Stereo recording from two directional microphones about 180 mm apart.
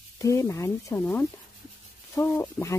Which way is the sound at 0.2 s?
15° left (ahead or behind).